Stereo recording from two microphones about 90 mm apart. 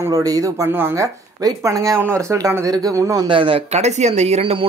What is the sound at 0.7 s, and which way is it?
Speech, 25° right (ahead or behind).